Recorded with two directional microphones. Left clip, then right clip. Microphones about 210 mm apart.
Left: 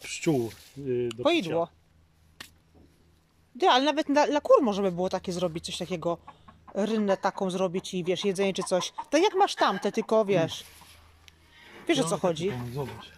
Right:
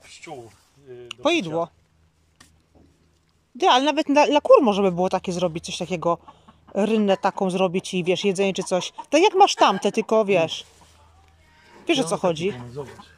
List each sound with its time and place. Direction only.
1.0 s speech: centre (ahead or behind)
2.4 s a sound: 40° left (ahead or behind)
3.5 s speech: centre (ahead or behind)
11.8 s speech: centre (ahead or behind)